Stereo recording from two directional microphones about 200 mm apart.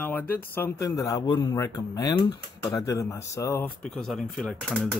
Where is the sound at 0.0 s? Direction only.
10° left (ahead or behind).